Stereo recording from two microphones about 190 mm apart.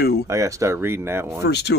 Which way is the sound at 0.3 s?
15° right (ahead or behind).